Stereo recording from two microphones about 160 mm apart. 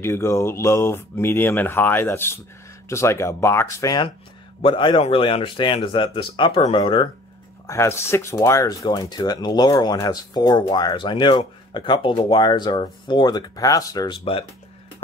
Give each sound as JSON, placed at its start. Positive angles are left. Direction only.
{"t": 0.0, "sound": "speech", "side_deg": 15}
{"t": 7.6, "sound": "speech", "side_deg": 15}